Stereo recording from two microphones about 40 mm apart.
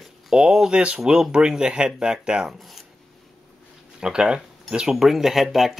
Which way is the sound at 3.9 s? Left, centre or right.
Centre.